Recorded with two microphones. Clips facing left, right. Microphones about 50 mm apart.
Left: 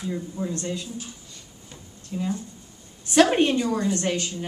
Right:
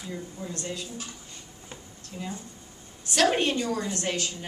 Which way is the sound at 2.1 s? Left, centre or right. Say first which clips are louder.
Left 8 dB; centre.